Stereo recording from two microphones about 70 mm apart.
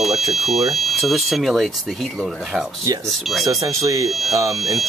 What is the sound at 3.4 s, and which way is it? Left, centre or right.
Speech, right.